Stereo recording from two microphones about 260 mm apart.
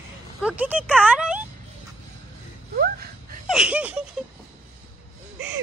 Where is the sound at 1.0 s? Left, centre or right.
Centre.